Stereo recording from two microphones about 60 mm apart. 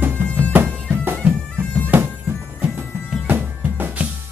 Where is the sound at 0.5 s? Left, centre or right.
Right.